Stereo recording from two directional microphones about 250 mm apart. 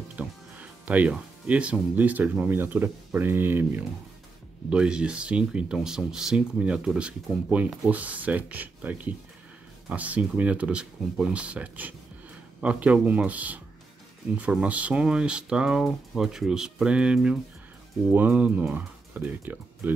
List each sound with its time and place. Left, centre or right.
0.1 s speech: centre